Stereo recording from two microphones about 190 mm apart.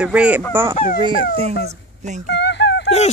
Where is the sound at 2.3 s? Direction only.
65° left (ahead or behind).